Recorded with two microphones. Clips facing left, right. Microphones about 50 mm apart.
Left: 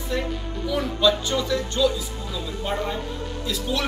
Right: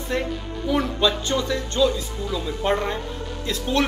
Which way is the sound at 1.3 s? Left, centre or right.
Centre.